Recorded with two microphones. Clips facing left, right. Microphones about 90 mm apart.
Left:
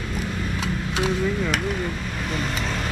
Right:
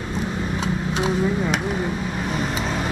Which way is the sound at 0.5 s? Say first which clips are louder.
Right 2 dB; centre (ahead or behind).